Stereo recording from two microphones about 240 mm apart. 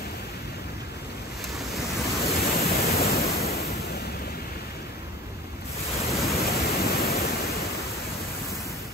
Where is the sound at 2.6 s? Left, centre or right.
Left.